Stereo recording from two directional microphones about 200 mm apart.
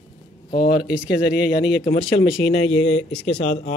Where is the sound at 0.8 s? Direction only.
5° right (ahead or behind).